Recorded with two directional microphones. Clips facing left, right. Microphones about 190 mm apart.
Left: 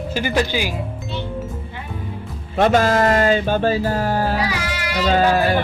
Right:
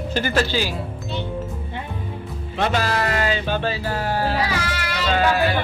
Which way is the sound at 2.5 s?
50° left (ahead or behind).